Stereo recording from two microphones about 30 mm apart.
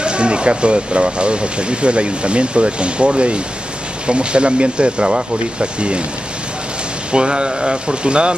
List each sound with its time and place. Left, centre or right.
0.0 s speech: right
7.1 s speech: right